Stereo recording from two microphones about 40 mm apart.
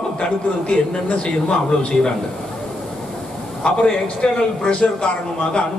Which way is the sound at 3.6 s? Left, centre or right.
Centre.